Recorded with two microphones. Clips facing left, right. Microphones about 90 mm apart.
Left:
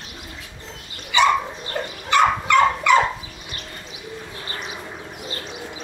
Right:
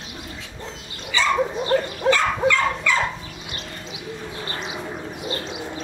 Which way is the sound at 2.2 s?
20° left (ahead or behind).